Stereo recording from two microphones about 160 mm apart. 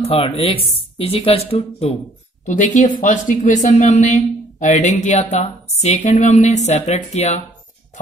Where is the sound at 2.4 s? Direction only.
50° left (ahead or behind).